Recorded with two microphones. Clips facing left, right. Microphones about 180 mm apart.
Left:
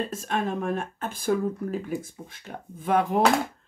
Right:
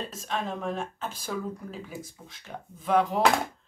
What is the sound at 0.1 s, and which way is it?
Speech, 55° left (ahead or behind).